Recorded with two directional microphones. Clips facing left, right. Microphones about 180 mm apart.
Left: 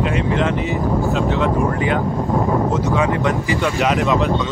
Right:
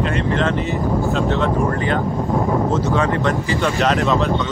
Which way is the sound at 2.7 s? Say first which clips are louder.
Even; 15° left (ahead or behind).